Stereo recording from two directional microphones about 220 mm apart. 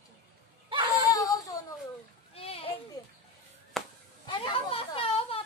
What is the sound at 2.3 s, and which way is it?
Children playing, 25° left (ahead or behind).